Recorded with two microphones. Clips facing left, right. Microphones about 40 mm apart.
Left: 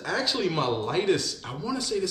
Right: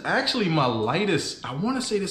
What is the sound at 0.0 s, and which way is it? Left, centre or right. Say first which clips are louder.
Speech: right 3 dB; centre.